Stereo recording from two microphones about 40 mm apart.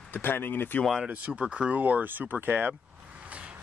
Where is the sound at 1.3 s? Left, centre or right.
Right.